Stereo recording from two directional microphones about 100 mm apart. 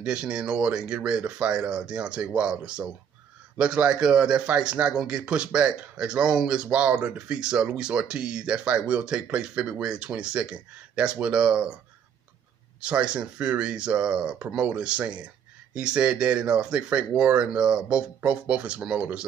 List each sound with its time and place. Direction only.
0.0 s a man's voice: 10° right (ahead or behind)
12.8 s a man's voice: 10° right (ahead or behind)